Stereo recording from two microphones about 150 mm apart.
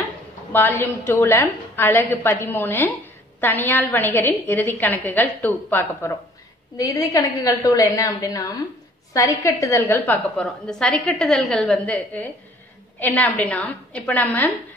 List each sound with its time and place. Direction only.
0.5 s a woman's voice: 15° left (ahead or behind)